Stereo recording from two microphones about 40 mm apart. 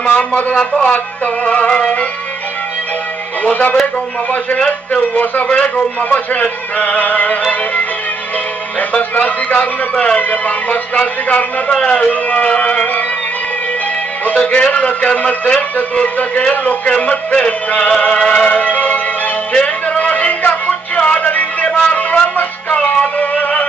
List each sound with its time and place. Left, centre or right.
0.1 s a man's voice: left
0.6 s speech: left
0.9 s a man's voice: left
3.8 s a man's voice: left
8.9 s a man's voice: left
14.3 s a man's voice: left
18.6 s music: left
19.5 s a sound: left